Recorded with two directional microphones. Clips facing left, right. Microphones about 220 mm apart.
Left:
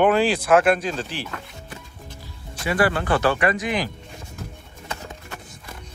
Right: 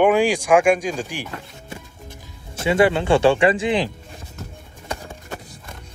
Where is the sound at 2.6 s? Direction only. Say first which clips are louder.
Right 4 dB; 25° right (ahead or behind).